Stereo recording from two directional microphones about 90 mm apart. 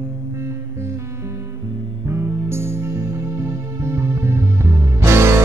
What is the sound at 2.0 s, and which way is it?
Music, 30° right (ahead or behind).